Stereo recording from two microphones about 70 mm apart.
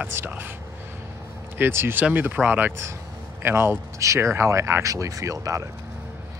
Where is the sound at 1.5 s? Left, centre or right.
Right.